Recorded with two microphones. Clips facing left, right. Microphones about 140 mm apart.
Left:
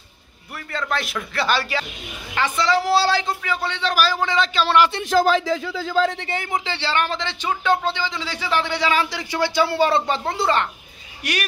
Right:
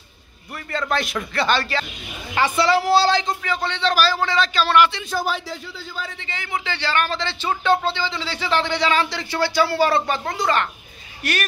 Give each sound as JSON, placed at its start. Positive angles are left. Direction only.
{"t": 0.7, "sound": "speech", "side_deg": 0}
{"t": 2.3, "sound": "speech", "side_deg": -10}
{"t": 5.9, "sound": "a man's voice", "side_deg": 90}
{"t": 6.2, "sound": "speech", "side_deg": 50}
{"t": 6.6, "sound": "speech", "side_deg": 30}
{"t": 11.2, "sound": "speech", "side_deg": 15}